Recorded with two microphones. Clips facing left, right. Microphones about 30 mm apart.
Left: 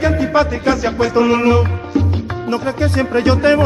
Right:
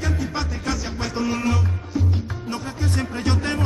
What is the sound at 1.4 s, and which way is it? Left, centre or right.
Music, left.